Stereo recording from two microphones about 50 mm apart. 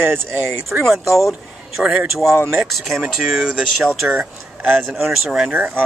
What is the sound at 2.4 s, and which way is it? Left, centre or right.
Speech, centre.